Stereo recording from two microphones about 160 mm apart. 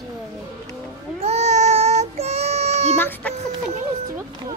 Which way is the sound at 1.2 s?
45° right (ahead or behind).